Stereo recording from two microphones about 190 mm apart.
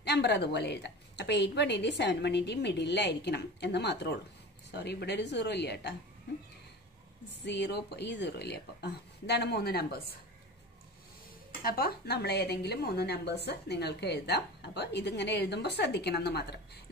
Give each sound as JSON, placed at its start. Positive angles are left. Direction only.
{"t": 0.0, "sound": "a woman's voice", "side_deg": 60}
{"t": 7.4, "sound": "a woman's voice", "side_deg": 65}
{"t": 11.6, "sound": "a woman's voice", "side_deg": 55}